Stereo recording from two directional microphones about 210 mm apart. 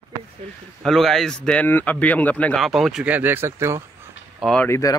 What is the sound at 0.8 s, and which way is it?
Speech, centre (ahead or behind).